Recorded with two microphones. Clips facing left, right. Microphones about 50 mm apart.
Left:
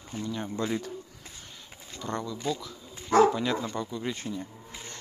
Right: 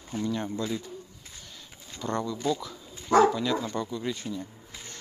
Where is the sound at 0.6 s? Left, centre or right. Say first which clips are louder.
Left 1 dB; left.